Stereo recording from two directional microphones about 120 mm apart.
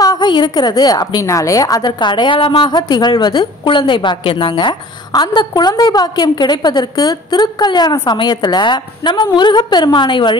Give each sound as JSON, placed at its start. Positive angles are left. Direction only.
{"t": 0.0, "sound": "a woman's voice", "side_deg": 35}